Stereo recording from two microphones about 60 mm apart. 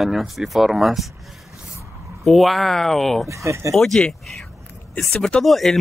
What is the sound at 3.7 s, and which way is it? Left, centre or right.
Speech, centre.